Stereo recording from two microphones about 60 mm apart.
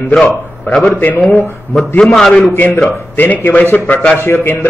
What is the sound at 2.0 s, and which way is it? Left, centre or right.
Speech, centre.